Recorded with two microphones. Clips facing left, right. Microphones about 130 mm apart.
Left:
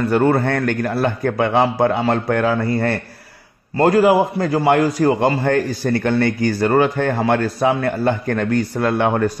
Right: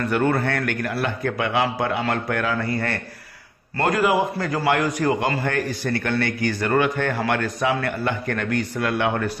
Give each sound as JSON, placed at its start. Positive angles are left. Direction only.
{"t": 0.1, "sound": "a man's voice", "side_deg": 30}
{"t": 7.1, "sound": "a man's voice", "side_deg": 20}
{"t": 7.3, "sound": "a man's voice", "side_deg": 35}